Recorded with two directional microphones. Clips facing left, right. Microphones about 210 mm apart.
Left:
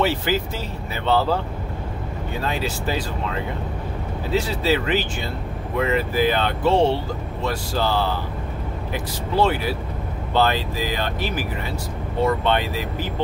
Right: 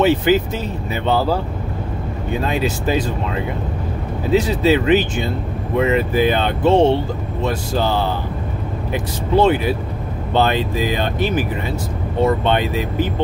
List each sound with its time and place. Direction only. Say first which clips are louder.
0.0 s speech: right 7 dB; 20° right (ahead or behind)
4.3 s speech: right 6 dB; 20° right (ahead or behind)